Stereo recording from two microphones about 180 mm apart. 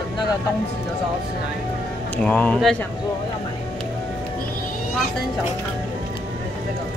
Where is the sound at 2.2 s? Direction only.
5° left (ahead or behind).